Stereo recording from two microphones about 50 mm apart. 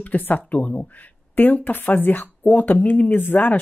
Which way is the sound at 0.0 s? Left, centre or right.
Left.